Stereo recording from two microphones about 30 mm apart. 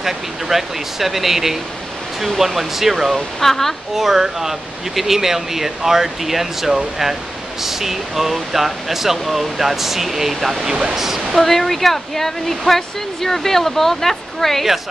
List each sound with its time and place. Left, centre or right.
0.0 s speech: centre
3.3 s speech: centre
3.9 s speech: centre
11.3 s speech: centre